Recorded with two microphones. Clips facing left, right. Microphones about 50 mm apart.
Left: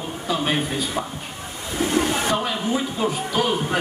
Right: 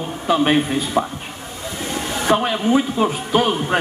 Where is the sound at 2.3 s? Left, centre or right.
Right.